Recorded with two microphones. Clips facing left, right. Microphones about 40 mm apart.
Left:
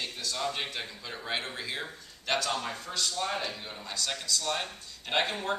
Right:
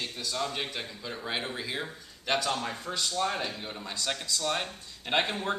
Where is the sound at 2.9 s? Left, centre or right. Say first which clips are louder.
Right 2 dB; centre.